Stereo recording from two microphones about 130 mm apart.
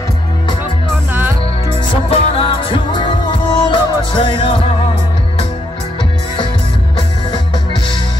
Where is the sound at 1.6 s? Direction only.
45° left (ahead or behind).